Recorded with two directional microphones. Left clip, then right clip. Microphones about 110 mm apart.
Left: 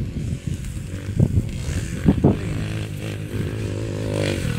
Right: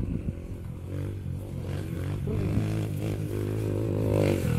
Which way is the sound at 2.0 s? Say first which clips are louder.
Left 16 dB; 20° right (ahead or behind).